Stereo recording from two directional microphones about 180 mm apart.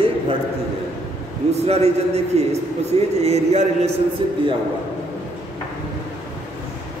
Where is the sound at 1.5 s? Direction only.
35° right (ahead or behind).